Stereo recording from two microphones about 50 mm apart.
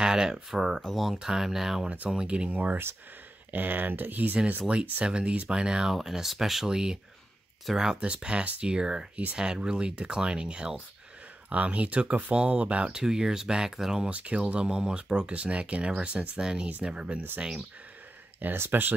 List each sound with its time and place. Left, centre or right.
0.0 s speech: centre
1.1 s speech: centre
2.0 s speech: centre; by 4.4 s right
4.5 s speech: right
5.9 s speech: centre
14.0 s speech: right
18.6 s speech: right